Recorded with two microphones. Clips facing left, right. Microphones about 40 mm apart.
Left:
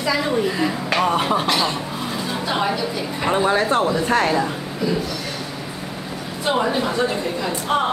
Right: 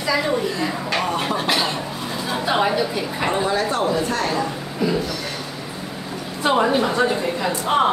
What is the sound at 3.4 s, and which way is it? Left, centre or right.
Speech, left.